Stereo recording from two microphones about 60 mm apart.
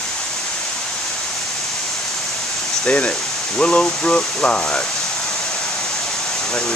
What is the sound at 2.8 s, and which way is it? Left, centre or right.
Speech, centre.